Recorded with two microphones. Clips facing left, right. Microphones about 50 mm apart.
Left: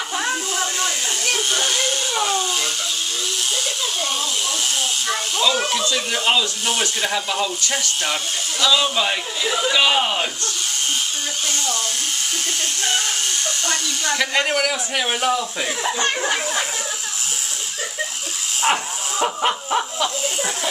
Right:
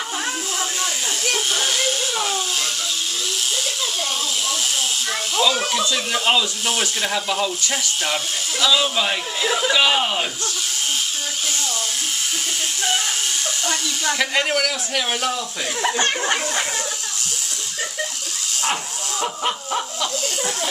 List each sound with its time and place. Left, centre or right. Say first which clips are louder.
0.2 s a sound: left 5 dB; centre
5.0 s speech: right 1 dB; centre
11.5 s electric shaver: left 2 dB; centre
13.7 s speech: even; centre
16.2 s speech: even; centre
18.6 s a sound: left 5 dB; left